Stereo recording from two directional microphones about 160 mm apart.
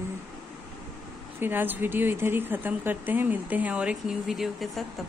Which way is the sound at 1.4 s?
10° right (ahead or behind).